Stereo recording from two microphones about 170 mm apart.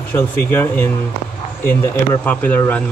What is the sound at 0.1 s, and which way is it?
Speech, 15° left (ahead or behind).